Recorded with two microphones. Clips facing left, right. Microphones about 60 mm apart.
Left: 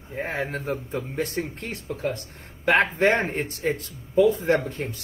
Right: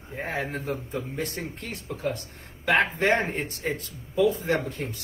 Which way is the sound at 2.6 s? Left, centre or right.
Left.